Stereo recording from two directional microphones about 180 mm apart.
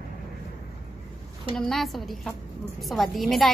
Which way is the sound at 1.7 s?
Centre (ahead or behind).